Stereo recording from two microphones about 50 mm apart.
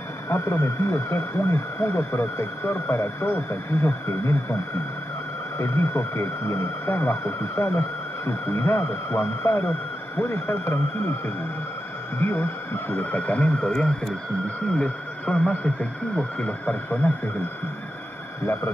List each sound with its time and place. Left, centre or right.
0.3 s speech: left
0.9 s speech: left
3.0 s speech: left
5.6 s speech: left
8.3 s speech: left
9.6 s speech: left
10.3 s speech: left
12.2 s speech: left
12.9 s speech: left